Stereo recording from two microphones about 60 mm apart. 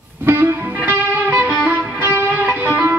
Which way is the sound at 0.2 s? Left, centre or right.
Right.